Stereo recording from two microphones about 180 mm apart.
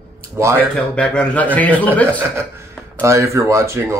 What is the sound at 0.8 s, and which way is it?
A man's voice, 5° left (ahead or behind).